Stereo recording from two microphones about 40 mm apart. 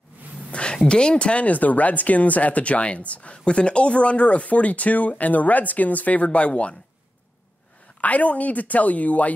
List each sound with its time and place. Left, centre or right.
0.5 s speech: left
8.0 s speech: left